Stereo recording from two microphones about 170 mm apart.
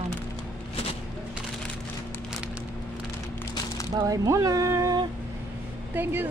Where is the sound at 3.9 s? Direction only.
20° right (ahead or behind).